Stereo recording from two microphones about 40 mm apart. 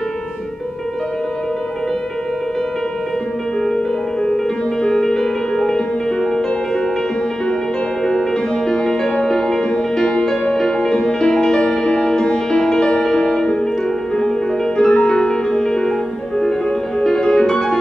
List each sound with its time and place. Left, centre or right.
4.8 s music: centre
8.6 s music: centre
14.8 s music: centre
17.0 s music: centre